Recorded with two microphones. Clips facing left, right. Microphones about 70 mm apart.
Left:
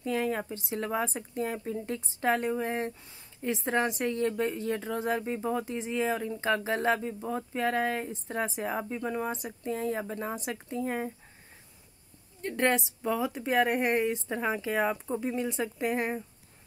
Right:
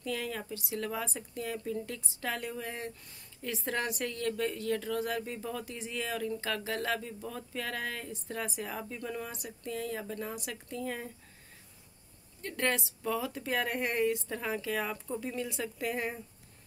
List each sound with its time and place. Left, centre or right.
0.0 s speech: left
12.4 s speech: left